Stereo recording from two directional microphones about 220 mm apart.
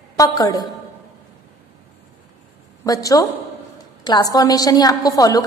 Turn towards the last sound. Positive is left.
turn(degrees=15)  # may be behind; listen again after turning